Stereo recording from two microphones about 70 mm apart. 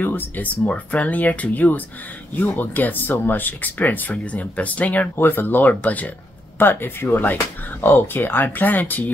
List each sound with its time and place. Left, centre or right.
0.0 s speech: left
5.2 s speech: left